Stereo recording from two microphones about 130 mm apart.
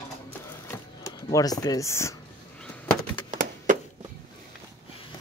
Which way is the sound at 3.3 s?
90° right.